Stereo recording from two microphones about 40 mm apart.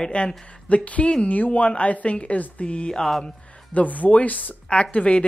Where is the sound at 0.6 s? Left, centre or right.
Left.